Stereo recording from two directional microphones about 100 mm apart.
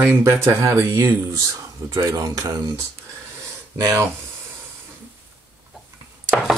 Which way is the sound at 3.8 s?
30° right (ahead or behind).